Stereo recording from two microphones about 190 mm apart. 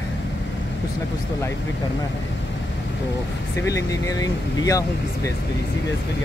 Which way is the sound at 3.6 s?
15° left (ahead or behind).